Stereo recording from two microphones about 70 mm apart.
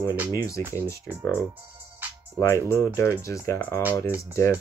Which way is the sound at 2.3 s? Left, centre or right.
Left.